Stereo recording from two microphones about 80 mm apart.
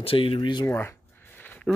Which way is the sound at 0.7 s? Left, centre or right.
Left.